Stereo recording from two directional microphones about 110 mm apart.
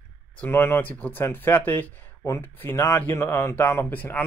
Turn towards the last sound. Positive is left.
turn(degrees=15)  # may be behind; listen again after turning